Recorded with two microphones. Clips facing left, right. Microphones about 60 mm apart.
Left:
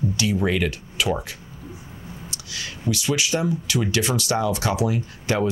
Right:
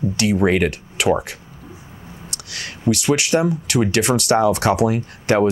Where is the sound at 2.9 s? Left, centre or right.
Right.